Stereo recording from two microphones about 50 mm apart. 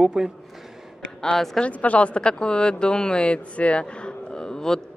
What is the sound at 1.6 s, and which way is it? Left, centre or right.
Speech, left.